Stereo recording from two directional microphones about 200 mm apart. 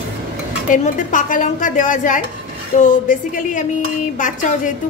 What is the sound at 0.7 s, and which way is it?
A woman's voice, 40° left (ahead or behind).